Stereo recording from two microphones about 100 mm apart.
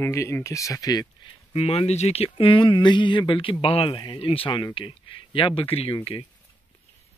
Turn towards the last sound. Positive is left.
turn(degrees=65)  # may be behind; listen again after turning